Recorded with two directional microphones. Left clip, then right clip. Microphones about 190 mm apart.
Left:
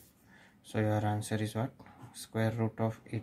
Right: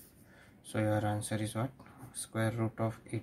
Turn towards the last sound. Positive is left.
turn(degrees=10)  # may be behind; listen again after turning